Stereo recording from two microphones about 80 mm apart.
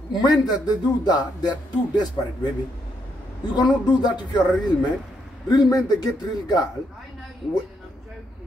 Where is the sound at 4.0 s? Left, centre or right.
Left.